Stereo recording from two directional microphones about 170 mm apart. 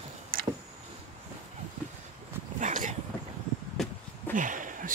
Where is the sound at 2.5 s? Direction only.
45° right (ahead or behind).